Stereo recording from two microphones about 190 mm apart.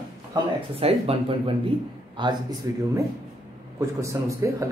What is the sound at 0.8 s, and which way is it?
Speech, 30° right (ahead or behind).